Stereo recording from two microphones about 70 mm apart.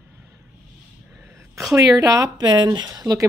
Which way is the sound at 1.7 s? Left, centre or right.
Right.